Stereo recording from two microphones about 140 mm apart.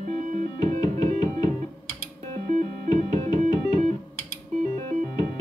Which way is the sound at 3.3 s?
50° right (ahead or behind).